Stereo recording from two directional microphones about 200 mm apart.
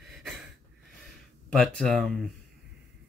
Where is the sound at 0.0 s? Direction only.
Centre (ahead or behind).